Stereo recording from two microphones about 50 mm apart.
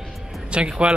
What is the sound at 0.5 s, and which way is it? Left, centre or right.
Speech, right.